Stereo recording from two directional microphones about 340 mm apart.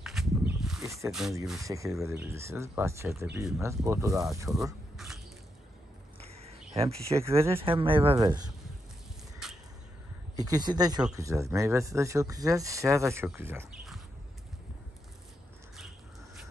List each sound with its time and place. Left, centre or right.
0.0 s speech: centre
6.7 s speech: centre
9.4 s a sound: centre
10.3 s speech: centre